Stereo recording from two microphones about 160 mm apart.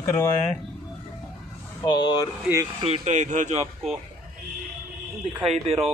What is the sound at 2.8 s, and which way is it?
Speech, 45° right (ahead or behind).